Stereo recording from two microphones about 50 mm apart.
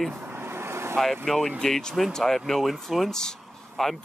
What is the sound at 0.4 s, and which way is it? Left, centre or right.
Vehicle, right.